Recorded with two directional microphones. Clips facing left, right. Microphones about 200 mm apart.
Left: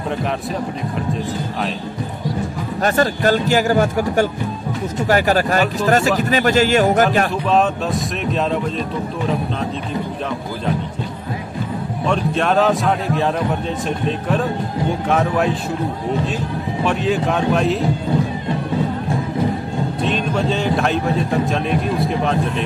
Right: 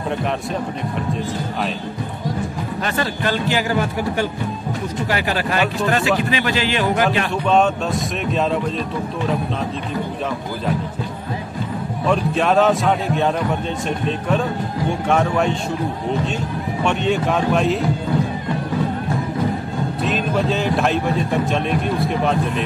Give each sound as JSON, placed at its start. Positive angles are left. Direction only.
{"t": 2.8, "sound": "speech", "side_deg": 45}
{"t": 7.4, "sound": "speech", "side_deg": 0}
{"t": 12.1, "sound": "speech", "side_deg": 0}
{"t": 16.8, "sound": "speech", "side_deg": 0}
{"t": 20.0, "sound": "speech", "side_deg": 0}